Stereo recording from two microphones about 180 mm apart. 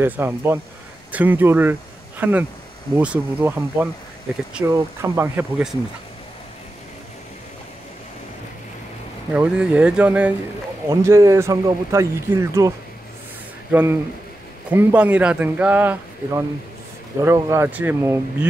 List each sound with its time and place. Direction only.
0.0 s speech: 15° right (ahead or behind)
9.3 s speech: 5° right (ahead or behind)
14.7 s speech: 10° right (ahead or behind)